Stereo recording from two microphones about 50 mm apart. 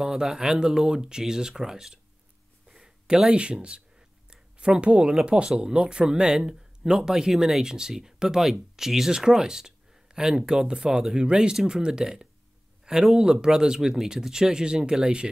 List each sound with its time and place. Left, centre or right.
0.0 s speech: centre